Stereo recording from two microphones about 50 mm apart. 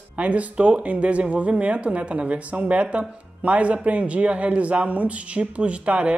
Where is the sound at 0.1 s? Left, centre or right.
Right.